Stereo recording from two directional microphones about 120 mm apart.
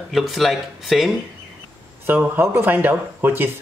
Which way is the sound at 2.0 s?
15° right (ahead or behind).